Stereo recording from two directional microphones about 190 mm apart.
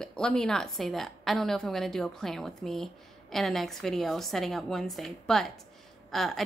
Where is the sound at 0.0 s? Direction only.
5° left (ahead or behind).